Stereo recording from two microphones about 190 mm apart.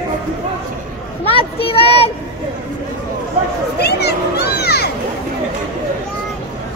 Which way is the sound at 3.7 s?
60° left (ahead or behind).